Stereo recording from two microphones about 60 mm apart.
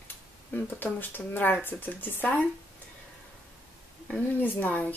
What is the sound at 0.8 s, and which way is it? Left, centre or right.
Speech, left.